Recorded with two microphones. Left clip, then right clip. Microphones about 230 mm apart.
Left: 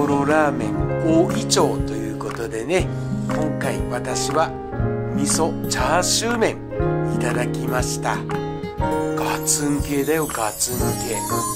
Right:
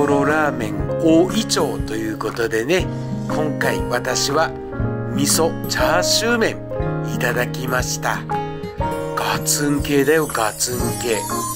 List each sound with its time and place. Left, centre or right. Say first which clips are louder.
0.0 s music: right 1 dB; centre
1.3 s speech: left 1 dB; centre
9.2 s speech: right 2 dB; centre